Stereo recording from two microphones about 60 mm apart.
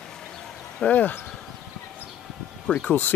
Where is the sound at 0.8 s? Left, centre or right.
Left.